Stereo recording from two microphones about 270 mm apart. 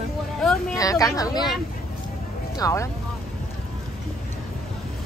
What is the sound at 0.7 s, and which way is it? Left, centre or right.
Speech, centre.